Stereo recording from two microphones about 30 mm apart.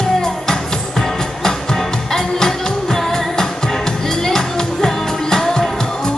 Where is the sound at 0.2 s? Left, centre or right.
Centre.